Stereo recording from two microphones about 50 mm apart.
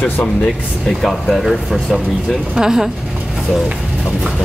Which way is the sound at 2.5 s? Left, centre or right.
Centre.